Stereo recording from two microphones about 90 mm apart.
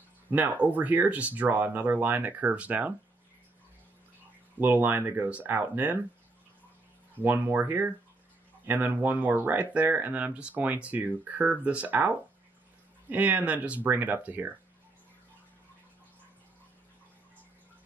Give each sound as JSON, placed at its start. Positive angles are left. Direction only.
{"t": 0.3, "sound": "speech", "side_deg": -20}
{"t": 4.6, "sound": "speech", "side_deg": -20}
{"t": 7.2, "sound": "speech", "side_deg": -20}